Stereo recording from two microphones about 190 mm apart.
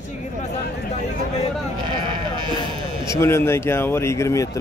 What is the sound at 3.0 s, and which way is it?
Speech, 15° left (ahead or behind).